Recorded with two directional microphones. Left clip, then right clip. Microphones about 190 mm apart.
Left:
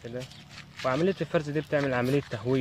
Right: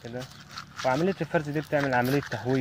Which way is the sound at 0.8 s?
25° left (ahead or behind).